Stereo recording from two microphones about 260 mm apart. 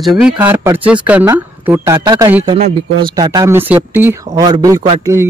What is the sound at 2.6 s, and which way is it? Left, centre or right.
Speech, right.